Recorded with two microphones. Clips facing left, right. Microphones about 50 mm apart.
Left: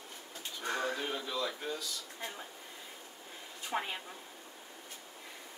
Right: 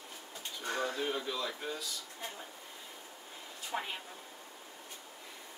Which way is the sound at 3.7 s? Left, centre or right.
Left.